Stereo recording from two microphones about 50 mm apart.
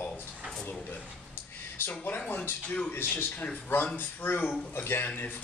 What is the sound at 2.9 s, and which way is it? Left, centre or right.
A man's voice, left.